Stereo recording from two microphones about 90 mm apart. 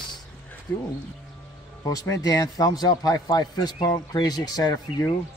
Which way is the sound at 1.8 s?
40° left (ahead or behind).